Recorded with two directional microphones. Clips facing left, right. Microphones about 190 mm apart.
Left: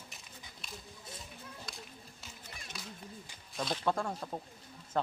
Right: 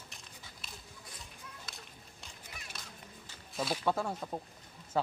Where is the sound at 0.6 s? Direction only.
5° right (ahead or behind).